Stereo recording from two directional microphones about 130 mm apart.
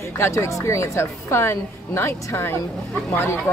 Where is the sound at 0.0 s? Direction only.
20° left (ahead or behind).